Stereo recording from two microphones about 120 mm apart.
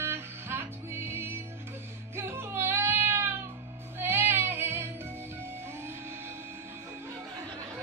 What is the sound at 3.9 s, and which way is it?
Female singing, 20° right (ahead or behind).